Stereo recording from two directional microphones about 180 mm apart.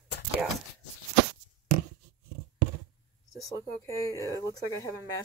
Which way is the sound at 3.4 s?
20° left (ahead or behind).